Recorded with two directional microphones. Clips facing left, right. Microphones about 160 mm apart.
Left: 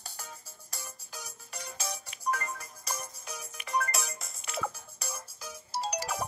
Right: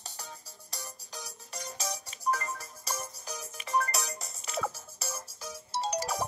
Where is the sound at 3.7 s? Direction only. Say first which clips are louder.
Right 2 dB; centre (ahead or behind).